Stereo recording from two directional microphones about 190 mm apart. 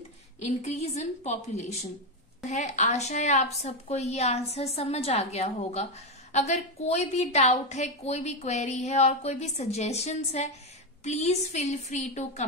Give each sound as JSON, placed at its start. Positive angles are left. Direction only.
{"t": 0.4, "sound": "a woman's voice", "side_deg": 35}